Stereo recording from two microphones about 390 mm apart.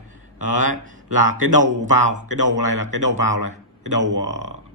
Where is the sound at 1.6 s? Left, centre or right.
Centre.